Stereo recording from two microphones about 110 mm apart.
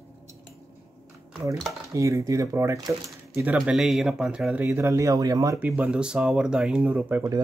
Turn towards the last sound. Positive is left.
turn(degrees=-15)  # may be behind; listen again after turning